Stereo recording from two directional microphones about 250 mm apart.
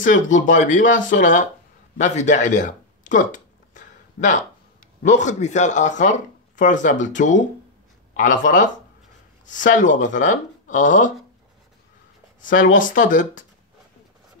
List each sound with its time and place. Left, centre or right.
0.0 s speech: left
2.0 s a sound: left
5.0 s speech: left
12.4 s speech: left